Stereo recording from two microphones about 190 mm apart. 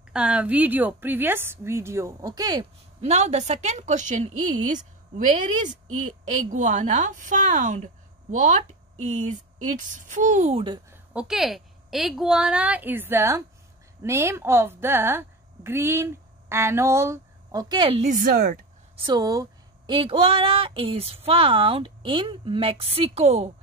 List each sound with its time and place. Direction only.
0.1 s a woman's voice: 5° right (ahead or behind)
3.0 s a woman's voice: 35° right (ahead or behind)
10.9 s a woman's voice: 5° right (ahead or behind); by 18.1 s 30° right (ahead or behind)
18.1 s speech: 45° right (ahead or behind)
19.0 s speech: 20° right (ahead or behind)